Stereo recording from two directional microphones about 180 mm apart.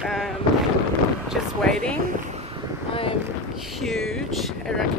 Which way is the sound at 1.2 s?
Centre (ahead or behind).